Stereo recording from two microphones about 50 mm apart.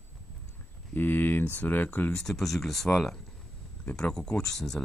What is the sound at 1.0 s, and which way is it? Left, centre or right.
Speech, left.